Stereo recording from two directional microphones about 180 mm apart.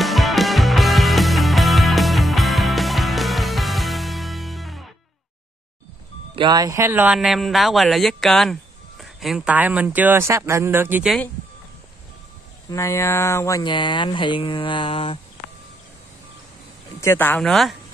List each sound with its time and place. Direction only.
0.0 s music: centre (ahead or behind)
6.3 s a man's voice: 25° right (ahead or behind)
12.6 s speech: 15° left (ahead or behind)
17.0 s speech: 15° left (ahead or behind)